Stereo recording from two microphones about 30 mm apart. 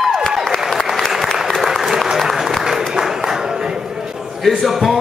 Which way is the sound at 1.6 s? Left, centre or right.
Centre.